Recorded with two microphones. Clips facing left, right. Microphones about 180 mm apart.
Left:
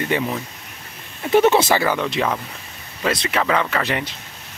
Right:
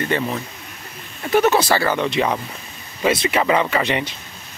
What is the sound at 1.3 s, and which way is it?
Speech, 25° left (ahead or behind).